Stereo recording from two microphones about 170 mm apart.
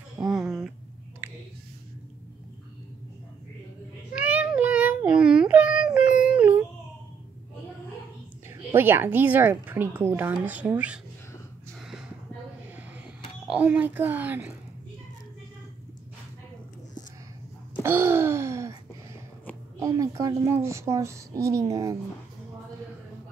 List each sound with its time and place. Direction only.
0.3 s a sound: 5° right (ahead or behind)
4.1 s child singing: 10° right (ahead or behind)
8.5 s a woman's voice: 15° right (ahead or behind)
13.5 s a woman's voice: 10° right (ahead or behind)
17.7 s a sound: 15° right (ahead or behind)
19.8 s a child's voice: 20° right (ahead or behind)